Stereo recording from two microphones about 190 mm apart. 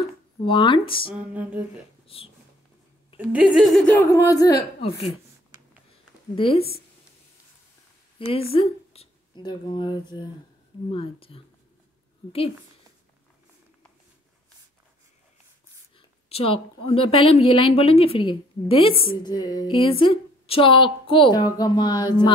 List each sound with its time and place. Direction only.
0.5 s speech: 25° left (ahead or behind)
1.1 s a sound: 10° right (ahead or behind)
2.1 s speech: 30° left (ahead or behind)
3.2 s speech: 5° right (ahead or behind); by 4.6 s 15° left (ahead or behind)
6.3 s speech: 30° left (ahead or behind)
8.3 s speech: 30° left (ahead or behind)
16.3 s a woman's voice: 30° left (ahead or behind)